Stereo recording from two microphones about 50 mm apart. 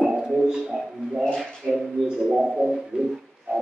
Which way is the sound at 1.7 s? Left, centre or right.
Centre.